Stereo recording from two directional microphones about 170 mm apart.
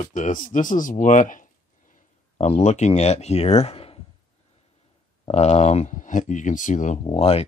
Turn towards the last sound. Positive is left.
turn(degrees=35)  # may be behind; listen again after turning